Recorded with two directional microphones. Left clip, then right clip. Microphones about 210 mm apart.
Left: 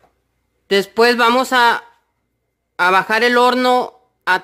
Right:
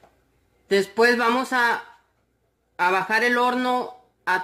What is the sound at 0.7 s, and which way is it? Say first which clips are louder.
Speech: left 5 dB; 45° left (ahead or behind).